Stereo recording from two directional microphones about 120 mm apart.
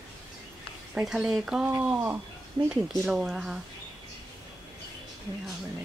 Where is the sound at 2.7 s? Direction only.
Centre (ahead or behind).